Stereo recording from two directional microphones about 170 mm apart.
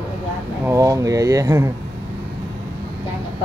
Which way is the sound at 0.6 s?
20° right (ahead or behind).